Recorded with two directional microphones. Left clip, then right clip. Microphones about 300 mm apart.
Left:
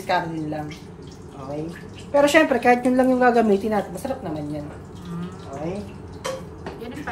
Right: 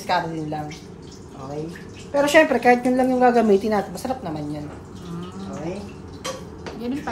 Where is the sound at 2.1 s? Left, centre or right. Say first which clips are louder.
Even; centre.